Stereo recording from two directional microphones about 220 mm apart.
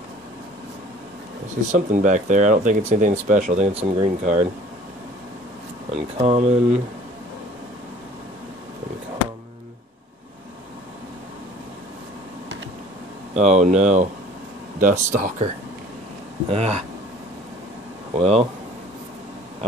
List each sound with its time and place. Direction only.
1.7 s speech: 35° right (ahead or behind)
5.9 s speech: 30° right (ahead or behind)
13.3 s speech: 30° right (ahead or behind)
16.4 s speech: 30° right (ahead or behind)
18.1 s speech: 30° right (ahead or behind)